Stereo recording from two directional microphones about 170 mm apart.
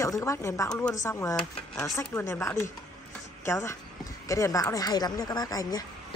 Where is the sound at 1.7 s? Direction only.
5° left (ahead or behind).